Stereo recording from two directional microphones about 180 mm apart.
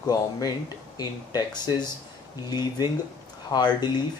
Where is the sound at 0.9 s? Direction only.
20° left (ahead or behind).